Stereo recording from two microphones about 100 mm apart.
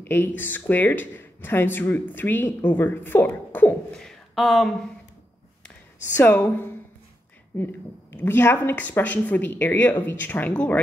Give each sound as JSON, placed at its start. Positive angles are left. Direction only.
{"t": 0.0, "sound": "speech", "side_deg": 20}
{"t": 3.9, "sound": "speech", "side_deg": 5}
{"t": 6.1, "sound": "speech", "side_deg": 20}